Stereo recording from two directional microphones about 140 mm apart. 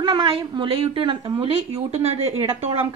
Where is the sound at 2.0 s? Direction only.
50° right (ahead or behind).